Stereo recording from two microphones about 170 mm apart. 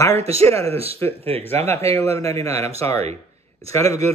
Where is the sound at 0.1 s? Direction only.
35° right (ahead or behind).